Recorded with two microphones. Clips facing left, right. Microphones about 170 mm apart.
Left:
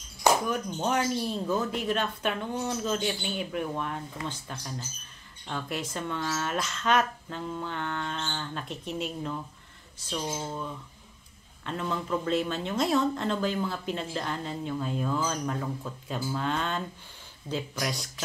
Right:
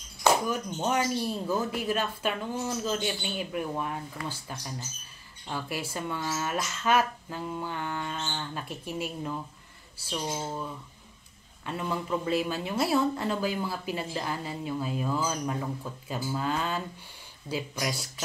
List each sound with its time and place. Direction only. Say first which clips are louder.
0.5 s a woman's voice: even; 5° right (ahead or behind)
11.6 s a woman's voice: even; 10° right (ahead or behind)